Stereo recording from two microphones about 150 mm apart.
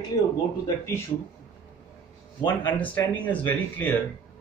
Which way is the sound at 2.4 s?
10° left (ahead or behind).